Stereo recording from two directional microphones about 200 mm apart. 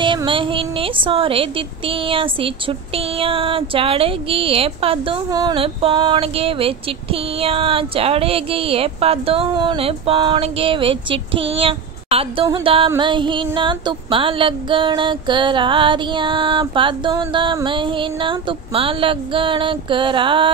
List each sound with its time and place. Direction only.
0.0 s a woman's voice: 25° right (ahead or behind)